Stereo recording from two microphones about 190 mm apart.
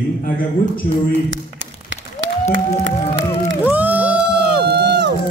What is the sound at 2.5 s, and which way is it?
Music, 80° right.